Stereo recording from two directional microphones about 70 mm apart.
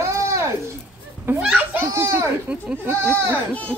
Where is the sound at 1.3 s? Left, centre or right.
Right.